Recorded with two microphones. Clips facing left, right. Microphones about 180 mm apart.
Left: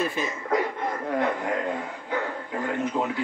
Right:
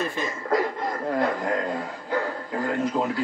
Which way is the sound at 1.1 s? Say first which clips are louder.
Right 1 dB; 35° right (ahead or behind).